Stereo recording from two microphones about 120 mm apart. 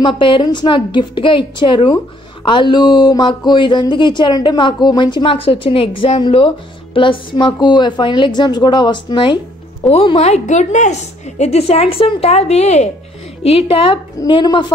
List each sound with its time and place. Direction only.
0.0 s speech: 40° left (ahead or behind)
10.1 s a woman's voice: 65° left (ahead or behind)
13.4 s a woman's voice: 55° left (ahead or behind)
14.2 s speech: 35° left (ahead or behind)